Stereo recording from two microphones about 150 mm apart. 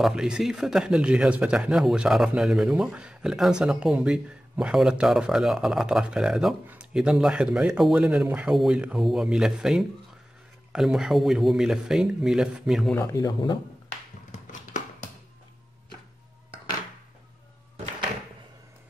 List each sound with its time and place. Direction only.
0.0 s speech: 5° right (ahead or behind)
13.1 s speech: 25° left (ahead or behind)
14.5 s a sound: 55° left (ahead or behind)